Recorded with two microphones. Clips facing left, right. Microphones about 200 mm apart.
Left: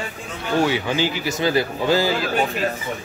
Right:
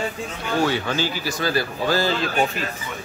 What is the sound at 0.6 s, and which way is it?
A man's voice, 15° left (ahead or behind).